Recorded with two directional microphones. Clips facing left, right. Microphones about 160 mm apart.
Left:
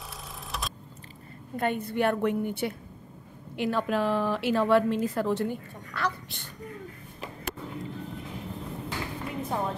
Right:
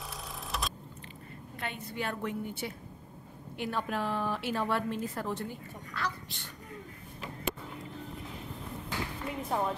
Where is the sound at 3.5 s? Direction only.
90° left; by 6.4 s 60° left (ahead or behind).